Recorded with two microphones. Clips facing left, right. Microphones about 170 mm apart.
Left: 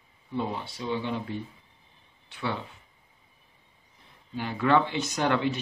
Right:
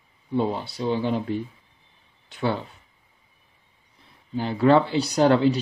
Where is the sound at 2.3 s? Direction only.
40° right (ahead or behind).